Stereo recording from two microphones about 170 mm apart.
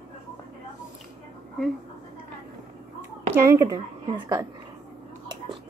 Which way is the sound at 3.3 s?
15° right (ahead or behind).